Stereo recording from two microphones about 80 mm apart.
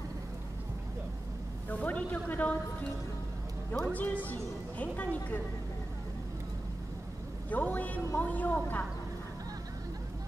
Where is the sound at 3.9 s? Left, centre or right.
Left.